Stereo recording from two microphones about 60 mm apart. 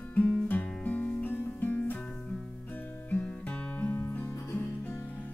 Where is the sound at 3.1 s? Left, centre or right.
Left.